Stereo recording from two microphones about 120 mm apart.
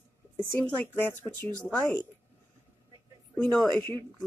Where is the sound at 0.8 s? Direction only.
15° left (ahead or behind).